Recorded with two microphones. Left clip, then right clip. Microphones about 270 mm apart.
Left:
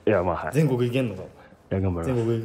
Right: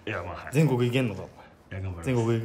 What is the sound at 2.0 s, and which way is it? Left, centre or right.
Speech, centre.